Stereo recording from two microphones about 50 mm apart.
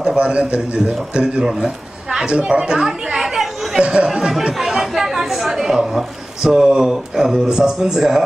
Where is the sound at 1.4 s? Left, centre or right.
Centre.